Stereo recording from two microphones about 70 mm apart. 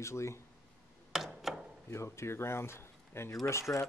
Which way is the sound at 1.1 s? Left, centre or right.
Centre.